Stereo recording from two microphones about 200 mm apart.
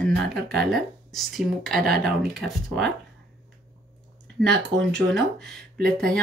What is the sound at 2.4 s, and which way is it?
Speech, 55° right (ahead or behind).